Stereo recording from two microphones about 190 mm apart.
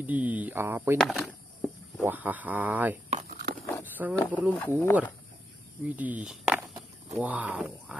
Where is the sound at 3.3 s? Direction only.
50° right (ahead or behind).